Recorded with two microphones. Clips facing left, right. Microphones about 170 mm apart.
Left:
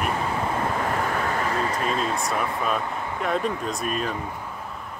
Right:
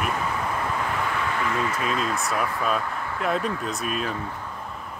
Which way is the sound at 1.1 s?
40° left (ahead or behind).